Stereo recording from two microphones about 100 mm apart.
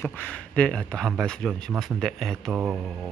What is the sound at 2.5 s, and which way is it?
Mantra, 15° right (ahead or behind).